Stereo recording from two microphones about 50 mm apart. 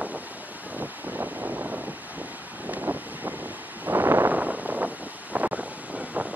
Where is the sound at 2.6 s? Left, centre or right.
Right.